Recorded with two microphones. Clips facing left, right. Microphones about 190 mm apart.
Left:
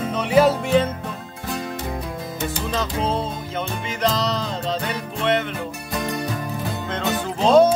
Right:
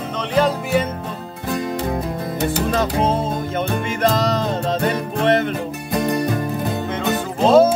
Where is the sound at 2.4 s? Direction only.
65° right (ahead or behind); by 6.2 s 50° right (ahead or behind).